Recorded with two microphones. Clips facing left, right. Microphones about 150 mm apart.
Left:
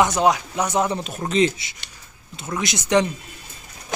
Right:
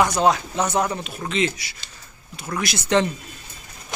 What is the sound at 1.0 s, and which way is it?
Speech, 40° left (ahead or behind).